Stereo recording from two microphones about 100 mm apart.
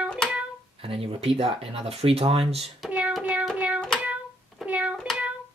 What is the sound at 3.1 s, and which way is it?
Music, 10° right (ahead or behind).